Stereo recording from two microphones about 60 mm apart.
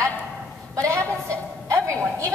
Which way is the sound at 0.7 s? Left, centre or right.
Right.